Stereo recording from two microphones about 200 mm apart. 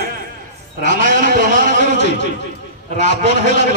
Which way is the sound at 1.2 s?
45° right (ahead or behind).